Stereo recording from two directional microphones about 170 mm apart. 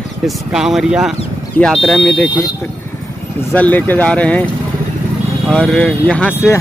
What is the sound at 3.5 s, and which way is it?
Speech, 10° left (ahead or behind).